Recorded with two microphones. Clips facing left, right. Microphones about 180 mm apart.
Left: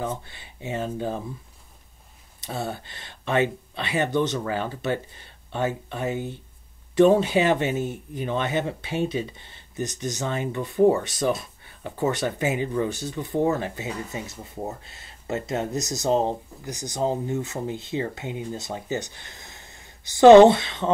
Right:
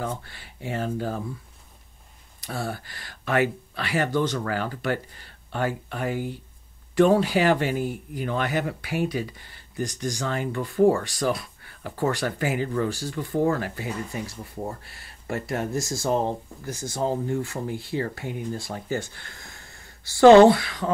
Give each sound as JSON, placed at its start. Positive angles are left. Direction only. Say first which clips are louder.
{"t": 0.2, "sound": "speech", "louder": "even", "side_deg": 20}
{"t": 2.4, "sound": "speech", "louder": "left 1 dB", "side_deg": 25}